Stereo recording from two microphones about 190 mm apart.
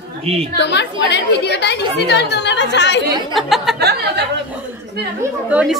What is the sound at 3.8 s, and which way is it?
Speech, 60° right (ahead or behind).